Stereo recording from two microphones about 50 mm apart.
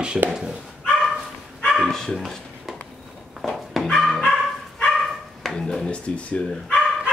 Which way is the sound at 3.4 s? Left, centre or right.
Centre.